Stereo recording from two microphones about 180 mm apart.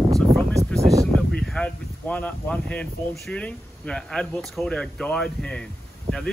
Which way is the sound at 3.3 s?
5° left (ahead or behind).